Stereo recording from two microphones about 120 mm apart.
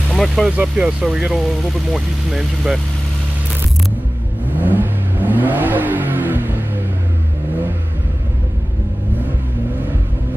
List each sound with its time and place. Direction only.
0.1 s speech: centre (ahead or behind)
0.6 s speech: 10° right (ahead or behind)
4.6 s vehicle: 15° right (ahead or behind)